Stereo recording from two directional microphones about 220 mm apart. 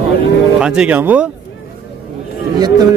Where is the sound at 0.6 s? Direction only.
5° right (ahead or behind).